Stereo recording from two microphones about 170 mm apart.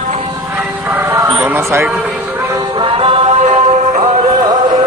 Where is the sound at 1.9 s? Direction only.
10° right (ahead or behind); by 4.2 s 45° right (ahead or behind).